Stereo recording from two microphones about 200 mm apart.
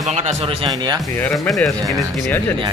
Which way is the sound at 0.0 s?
35° right (ahead or behind).